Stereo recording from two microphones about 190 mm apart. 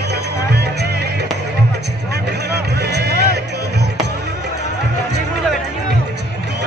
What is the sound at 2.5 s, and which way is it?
Music, 60° right (ahead or behind).